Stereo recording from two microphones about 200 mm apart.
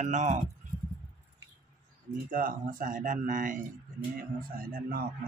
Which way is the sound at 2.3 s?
45° right (ahead or behind).